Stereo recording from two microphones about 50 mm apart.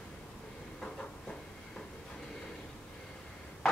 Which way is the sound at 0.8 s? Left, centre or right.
Centre.